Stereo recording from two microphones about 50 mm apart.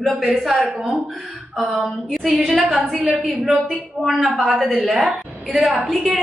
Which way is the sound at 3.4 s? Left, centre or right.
Centre.